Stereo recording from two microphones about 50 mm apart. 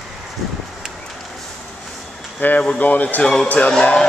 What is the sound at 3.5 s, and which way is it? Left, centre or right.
Music, left.